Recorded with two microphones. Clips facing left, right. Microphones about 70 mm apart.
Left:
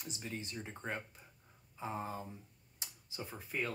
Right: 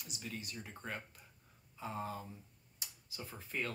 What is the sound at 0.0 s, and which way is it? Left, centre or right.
Speech, left.